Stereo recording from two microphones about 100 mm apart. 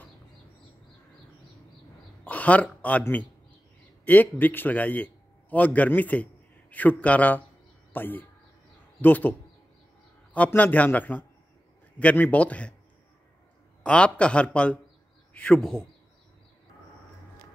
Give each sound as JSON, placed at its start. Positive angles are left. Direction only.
{"t": 2.2, "sound": "a man's voice", "side_deg": 15}
{"t": 10.3, "sound": "a man's voice", "side_deg": 15}
{"t": 13.8, "sound": "a man's voice", "side_deg": 10}